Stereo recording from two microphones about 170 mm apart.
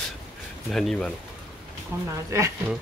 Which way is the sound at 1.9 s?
15° right (ahead or behind).